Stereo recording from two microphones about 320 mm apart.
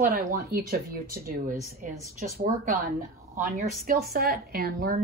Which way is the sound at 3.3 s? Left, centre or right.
Right.